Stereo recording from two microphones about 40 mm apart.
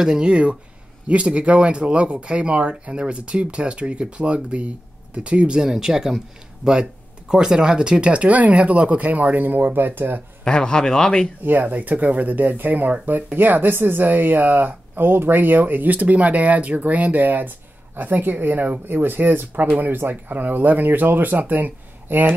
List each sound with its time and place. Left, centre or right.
0.0 s speech: centre
0.3 s speech: right
5.6 s speech: centre; by 10.2 s right
10.4 s speech: left
11.6 s speech: right